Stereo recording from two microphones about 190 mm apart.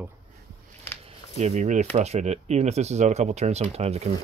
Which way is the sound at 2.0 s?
35° right (ahead or behind).